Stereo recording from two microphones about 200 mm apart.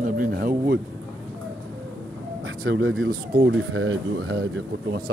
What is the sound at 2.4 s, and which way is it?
Speech, 75° right (ahead or behind).